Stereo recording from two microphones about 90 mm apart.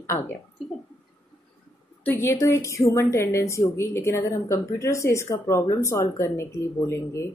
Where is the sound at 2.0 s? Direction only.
25° left (ahead or behind).